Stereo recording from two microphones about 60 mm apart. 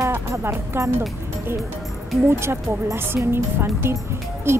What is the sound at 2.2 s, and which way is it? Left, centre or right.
Speech, right.